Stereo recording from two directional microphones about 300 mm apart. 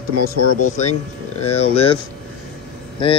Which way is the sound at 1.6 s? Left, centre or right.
Centre.